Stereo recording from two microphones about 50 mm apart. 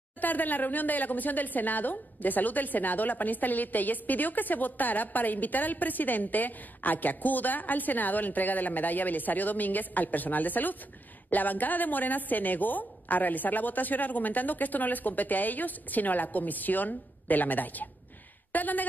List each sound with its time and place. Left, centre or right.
0.2 s a woman's voice: left